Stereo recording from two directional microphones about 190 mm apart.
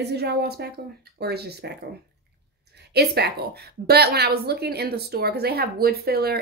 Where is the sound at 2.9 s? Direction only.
60° right (ahead or behind).